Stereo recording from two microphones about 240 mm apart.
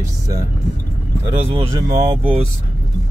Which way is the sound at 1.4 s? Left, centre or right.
Centre.